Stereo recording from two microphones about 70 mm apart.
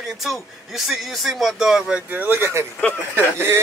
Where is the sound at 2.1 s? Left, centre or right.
Right.